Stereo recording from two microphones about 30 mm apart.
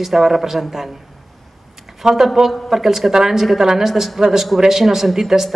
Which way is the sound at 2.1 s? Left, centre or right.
Centre.